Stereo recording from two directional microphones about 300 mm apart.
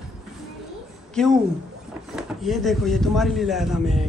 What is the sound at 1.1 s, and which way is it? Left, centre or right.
Speech, centre.